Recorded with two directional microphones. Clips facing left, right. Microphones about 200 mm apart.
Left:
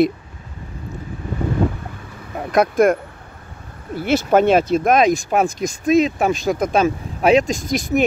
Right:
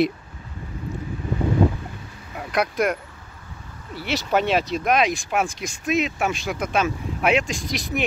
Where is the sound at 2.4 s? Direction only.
50° left (ahead or behind).